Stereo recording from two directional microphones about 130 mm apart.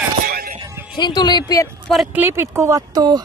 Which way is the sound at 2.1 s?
20° right (ahead or behind).